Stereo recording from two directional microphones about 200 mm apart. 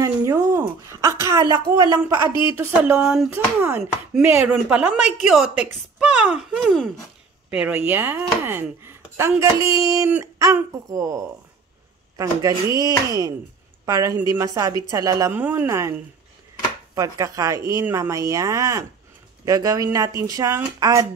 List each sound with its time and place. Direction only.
0.0 s a sound: 15° right (ahead or behind)
2.5 s speech: 10° right (ahead or behind)
16.9 s speech: 15° right (ahead or behind)